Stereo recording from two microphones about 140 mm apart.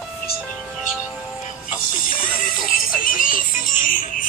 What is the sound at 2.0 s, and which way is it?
Music, 80° left.